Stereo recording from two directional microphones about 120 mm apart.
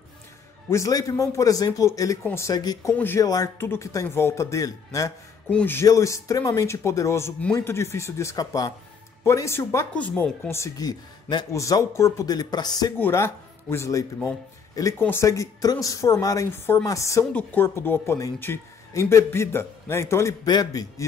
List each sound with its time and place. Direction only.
0.7 s speech: 25° left (ahead or behind)
2.5 s speech: 35° left (ahead or behind)
5.5 s speech: 10° left (ahead or behind)
5.8 s speech: 25° left (ahead or behind)
10.5 s speech: 30° left (ahead or behind)
12.9 s speech: 20° left (ahead or behind)
17.2 s speech: 10° left (ahead or behind)
20.4 s speech: 35° left (ahead or behind)